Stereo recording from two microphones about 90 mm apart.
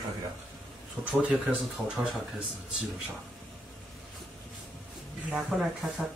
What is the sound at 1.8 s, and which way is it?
Speech, 25° right (ahead or behind).